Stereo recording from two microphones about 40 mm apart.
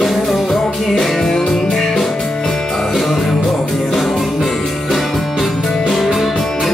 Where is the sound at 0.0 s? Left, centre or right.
Centre.